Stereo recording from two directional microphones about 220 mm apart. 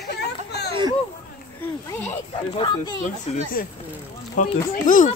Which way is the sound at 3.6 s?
40° left (ahead or behind).